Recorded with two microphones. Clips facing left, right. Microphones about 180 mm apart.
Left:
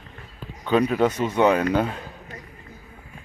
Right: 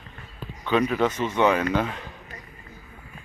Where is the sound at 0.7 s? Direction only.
40° left (ahead or behind).